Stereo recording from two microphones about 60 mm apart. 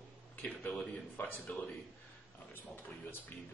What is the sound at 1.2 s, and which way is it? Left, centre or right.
Speech, left.